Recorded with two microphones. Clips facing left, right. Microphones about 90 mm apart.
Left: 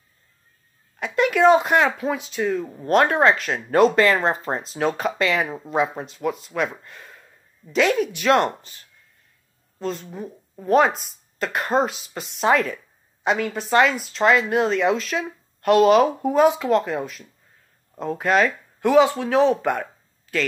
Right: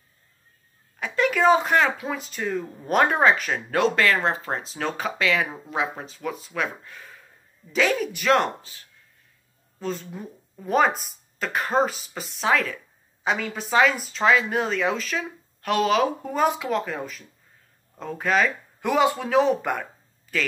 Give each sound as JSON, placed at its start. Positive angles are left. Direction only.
{"t": 0.9, "sound": "speech", "side_deg": 0}
{"t": 3.9, "sound": "speech", "side_deg": 5}